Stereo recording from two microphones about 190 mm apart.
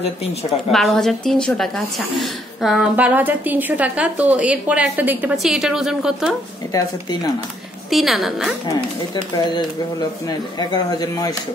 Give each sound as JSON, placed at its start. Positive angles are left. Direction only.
{"t": 0.7, "sound": "speech", "side_deg": 0}
{"t": 7.9, "sound": "speech", "side_deg": 0}
{"t": 8.6, "sound": "speech", "side_deg": 20}